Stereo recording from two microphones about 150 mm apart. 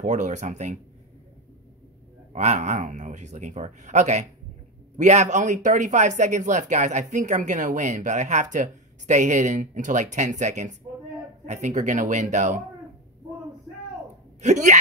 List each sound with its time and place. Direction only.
0.0 s speech: 55° right (ahead or behind)
2.3 s speech: 50° right (ahead or behind)
14.4 s speech: 50° right (ahead or behind)